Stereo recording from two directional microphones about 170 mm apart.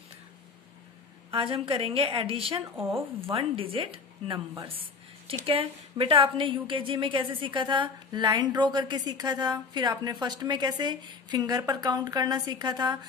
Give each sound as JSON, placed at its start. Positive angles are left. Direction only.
{"t": 1.3, "sound": "a woman's voice", "side_deg": -30}